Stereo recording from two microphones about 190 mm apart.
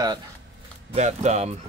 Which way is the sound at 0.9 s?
35° right (ahead or behind).